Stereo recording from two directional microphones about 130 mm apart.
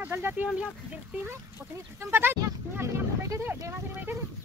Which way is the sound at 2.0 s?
15° right (ahead or behind).